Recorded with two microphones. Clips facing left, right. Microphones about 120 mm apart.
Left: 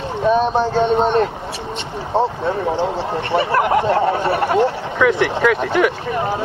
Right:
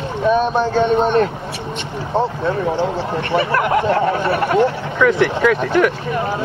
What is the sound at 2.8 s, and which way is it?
Speech, 30° left (ahead or behind).